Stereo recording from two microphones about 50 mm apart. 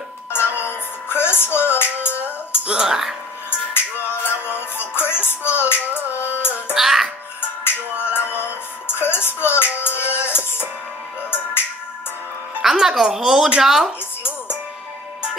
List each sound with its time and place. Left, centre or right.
0.3 s music: left
2.6 s speech: centre
4.1 s music: left
6.7 s music: centre
7.6 s music: left
12.6 s a woman's voice: centre